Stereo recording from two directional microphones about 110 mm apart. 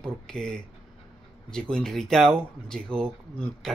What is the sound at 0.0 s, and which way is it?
Speech, 5° left (ahead or behind).